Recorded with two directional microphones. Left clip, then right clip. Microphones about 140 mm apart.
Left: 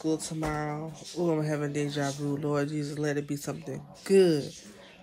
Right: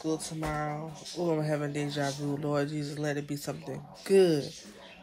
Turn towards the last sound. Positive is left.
turn(degrees=20)  # may be behind; listen again after turning